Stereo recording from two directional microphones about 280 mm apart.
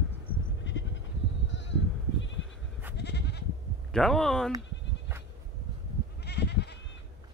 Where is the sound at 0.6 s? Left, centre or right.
Left.